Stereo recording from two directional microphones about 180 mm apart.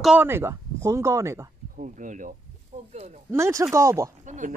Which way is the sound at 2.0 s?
45° right (ahead or behind).